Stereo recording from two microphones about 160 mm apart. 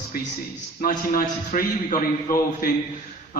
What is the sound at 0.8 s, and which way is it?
A man's voice, 60° left (ahead or behind).